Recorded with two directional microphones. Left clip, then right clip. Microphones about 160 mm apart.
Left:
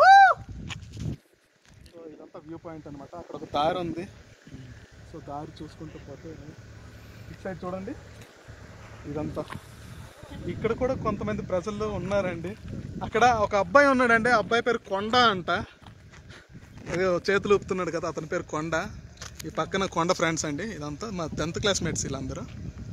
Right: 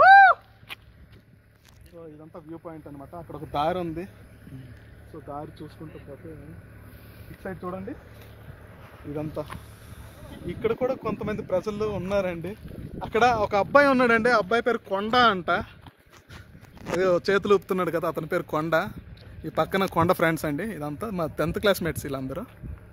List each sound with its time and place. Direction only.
2.3 s speech: 35° left (ahead or behind)
5.3 s speech: 70° left (ahead or behind)
7.4 s speech: 55° left (ahead or behind)
9.1 s speech: 60° right (ahead or behind)
10.6 s speech: 50° right (ahead or behind); by 15.0 s 90° right
15.0 s speech: 50° right (ahead or behind)
17.0 s speech: 90° right; by 22.5 s 50° right (ahead or behind)